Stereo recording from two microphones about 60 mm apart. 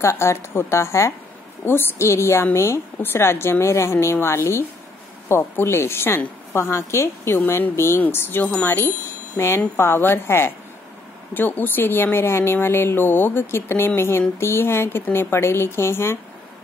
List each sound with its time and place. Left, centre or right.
0.0 s a woman's voice: left
1.6 s a woman's voice: left
7.3 s a woman's voice: left